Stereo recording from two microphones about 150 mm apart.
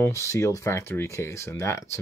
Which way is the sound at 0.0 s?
20° left (ahead or behind).